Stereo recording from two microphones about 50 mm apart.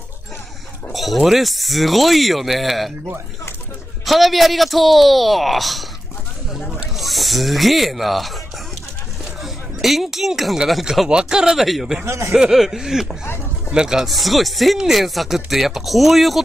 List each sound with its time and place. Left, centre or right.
0.9 s speech: centre
4.0 s speech: centre
9.4 s speech: centre
11.1 s speech: centre
12.1 s speech: right
12.4 s speech: centre
14.0 s speech: centre